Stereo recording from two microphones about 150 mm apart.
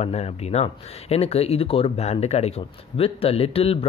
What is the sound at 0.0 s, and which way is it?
Speech, 45° left (ahead or behind).